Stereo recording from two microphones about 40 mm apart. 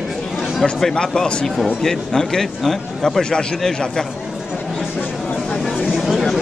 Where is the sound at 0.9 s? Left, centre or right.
Centre.